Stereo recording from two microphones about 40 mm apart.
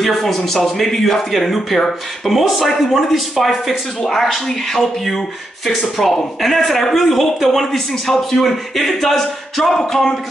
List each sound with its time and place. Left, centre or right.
0.0 s speech: centre
9.8 s speech: centre